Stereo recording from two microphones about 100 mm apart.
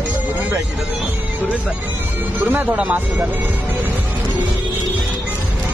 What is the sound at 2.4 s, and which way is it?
Speech, 15° right (ahead or behind).